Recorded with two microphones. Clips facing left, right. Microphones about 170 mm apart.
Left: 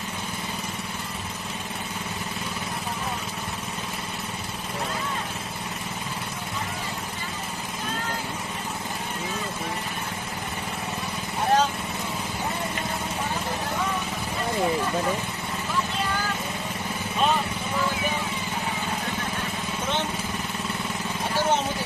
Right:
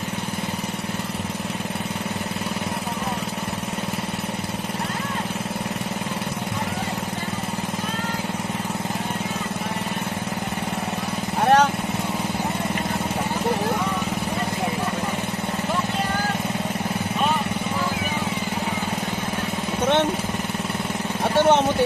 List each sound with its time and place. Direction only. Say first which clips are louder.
11.4 s vehicle: right 5 dB; 70° right (ahead or behind)
21.4 s vehicle: right 8 dB; 65° right (ahead or behind)